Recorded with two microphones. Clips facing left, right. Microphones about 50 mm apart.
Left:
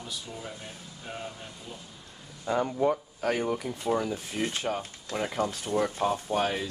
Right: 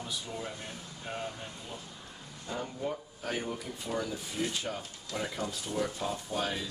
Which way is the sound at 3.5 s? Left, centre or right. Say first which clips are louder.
Left 8 dB; left.